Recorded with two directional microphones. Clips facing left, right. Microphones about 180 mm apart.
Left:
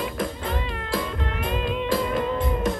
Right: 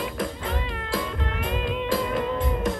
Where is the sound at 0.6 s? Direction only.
35° left (ahead or behind).